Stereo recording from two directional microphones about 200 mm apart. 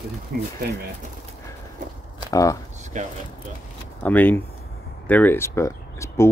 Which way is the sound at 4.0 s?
10° left (ahead or behind).